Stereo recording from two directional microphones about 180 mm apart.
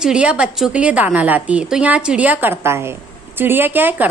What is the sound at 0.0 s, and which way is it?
A woman's voice, 5° right (ahead or behind).